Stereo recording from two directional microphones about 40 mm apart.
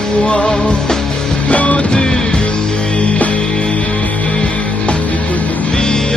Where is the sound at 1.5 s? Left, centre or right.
Left.